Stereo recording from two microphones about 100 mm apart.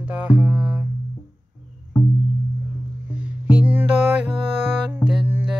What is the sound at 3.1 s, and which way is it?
Music, 15° right (ahead or behind).